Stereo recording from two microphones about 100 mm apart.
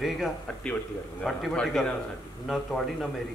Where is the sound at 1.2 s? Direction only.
5° left (ahead or behind).